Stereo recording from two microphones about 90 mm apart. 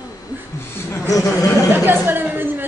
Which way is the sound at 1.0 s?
40° left (ahead or behind).